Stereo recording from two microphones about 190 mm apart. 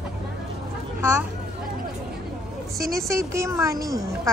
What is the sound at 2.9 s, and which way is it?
A woman's voice, 15° right (ahead or behind).